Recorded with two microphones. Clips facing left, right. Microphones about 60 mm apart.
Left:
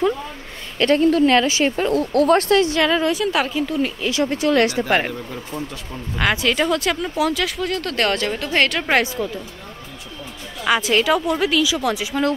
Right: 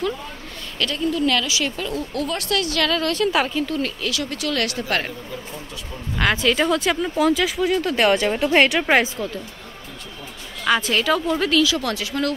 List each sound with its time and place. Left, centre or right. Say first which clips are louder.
0.7 s a woman's voice: left 8 dB; left
1.2 s speech: left 5 dB; left; by 3.2 s centre
3.2 s speech: even; centre
4.0 s speech: left 6 dB; left
6.1 s speech: even; centre
10.6 s speech: left 2 dB; centre